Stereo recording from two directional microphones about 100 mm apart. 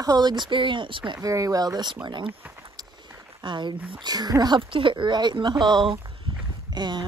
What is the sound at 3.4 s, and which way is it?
Speech, 50° right (ahead or behind).